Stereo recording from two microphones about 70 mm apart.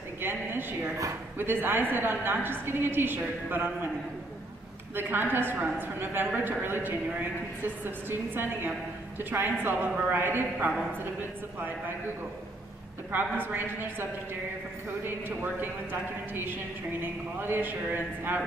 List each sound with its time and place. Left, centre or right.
0.2 s a sound: right
1.4 s a woman's voice: right
4.9 s a woman's voice: right
13.1 s a woman's voice: right
15.0 s a woman's voice: right